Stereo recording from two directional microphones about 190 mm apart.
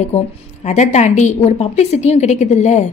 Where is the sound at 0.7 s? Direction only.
40° left (ahead or behind).